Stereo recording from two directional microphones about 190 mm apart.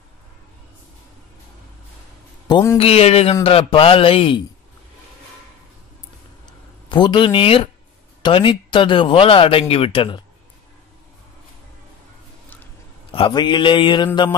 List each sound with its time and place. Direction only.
2.4 s a man's voice: 20° left (ahead or behind)
2.8 s speech: 30° left (ahead or behind)
6.9 s speech: 25° left (ahead or behind)
13.1 s speech: 25° left (ahead or behind)